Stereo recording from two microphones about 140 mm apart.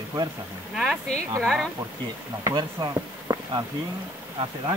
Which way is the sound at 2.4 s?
30° right (ahead or behind).